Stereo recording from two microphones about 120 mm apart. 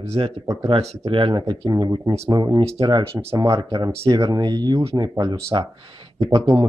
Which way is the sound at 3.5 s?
35° right (ahead or behind).